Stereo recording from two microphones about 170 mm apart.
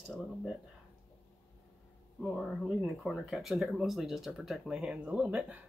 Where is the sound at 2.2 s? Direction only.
5° left (ahead or behind).